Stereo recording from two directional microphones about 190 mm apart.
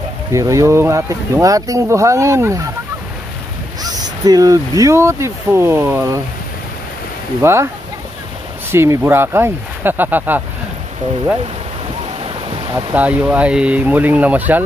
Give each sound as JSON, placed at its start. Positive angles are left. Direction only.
{"t": 0.3, "sound": "speech", "side_deg": -15}
{"t": 3.8, "sound": "speech", "side_deg": -20}
{"t": 7.4, "sound": "speech", "side_deg": -15}
{"t": 8.7, "sound": "speech", "side_deg": -15}
{"t": 12.9, "sound": "speech", "side_deg": -10}